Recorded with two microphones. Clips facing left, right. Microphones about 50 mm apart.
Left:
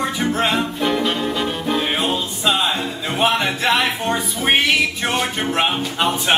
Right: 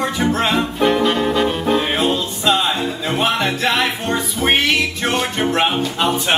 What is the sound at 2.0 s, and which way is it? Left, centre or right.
Music, centre.